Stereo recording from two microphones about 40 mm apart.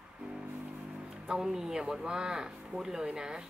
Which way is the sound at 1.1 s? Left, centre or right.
Centre.